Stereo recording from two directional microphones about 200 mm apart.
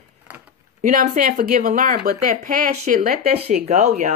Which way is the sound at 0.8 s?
45° right (ahead or behind).